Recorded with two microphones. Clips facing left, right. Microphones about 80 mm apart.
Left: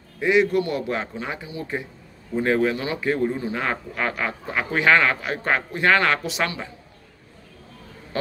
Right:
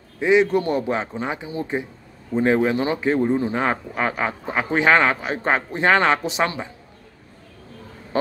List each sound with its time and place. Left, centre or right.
0.2 s speech: right